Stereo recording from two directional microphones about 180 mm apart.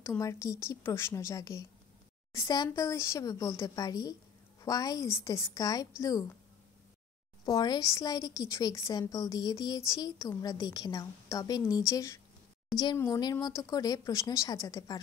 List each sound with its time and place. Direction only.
0.0 s a woman's voice: 15° left (ahead or behind)
7.4 s a woman's voice: 20° left (ahead or behind)